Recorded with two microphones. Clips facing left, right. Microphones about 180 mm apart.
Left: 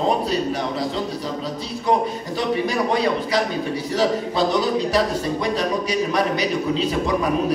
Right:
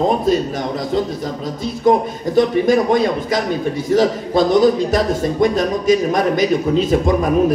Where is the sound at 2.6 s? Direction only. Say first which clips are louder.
Right 6 dB; 50° right (ahead or behind).